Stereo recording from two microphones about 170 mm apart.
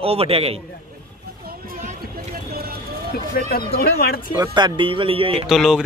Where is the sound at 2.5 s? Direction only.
60° right (ahead or behind).